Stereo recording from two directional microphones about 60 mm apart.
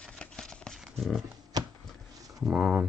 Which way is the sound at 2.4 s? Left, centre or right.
Right.